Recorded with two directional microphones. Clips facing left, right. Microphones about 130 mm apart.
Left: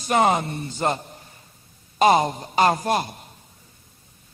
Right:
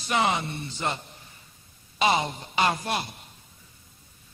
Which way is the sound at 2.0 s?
45° left (ahead or behind).